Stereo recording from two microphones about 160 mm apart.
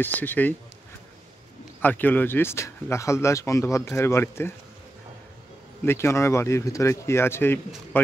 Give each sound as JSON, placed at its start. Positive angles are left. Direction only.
{"t": 0.0, "sound": "speech", "side_deg": 10}
{"t": 1.8, "sound": "speech", "side_deg": 10}
{"t": 5.9, "sound": "speech", "side_deg": 15}